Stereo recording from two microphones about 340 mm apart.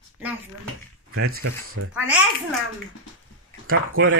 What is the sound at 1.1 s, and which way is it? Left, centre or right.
Speech, right.